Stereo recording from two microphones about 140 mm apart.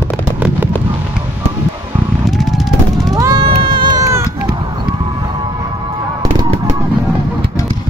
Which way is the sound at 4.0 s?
20° right (ahead or behind).